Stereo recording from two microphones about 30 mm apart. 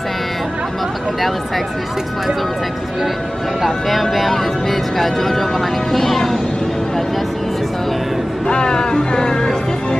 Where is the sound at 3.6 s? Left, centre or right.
Centre.